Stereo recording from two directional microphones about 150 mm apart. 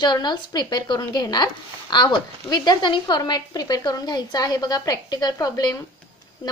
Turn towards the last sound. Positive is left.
turn(degrees=25)  # may be behind; listen again after turning